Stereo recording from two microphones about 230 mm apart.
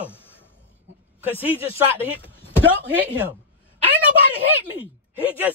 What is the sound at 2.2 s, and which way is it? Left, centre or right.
Speech, centre.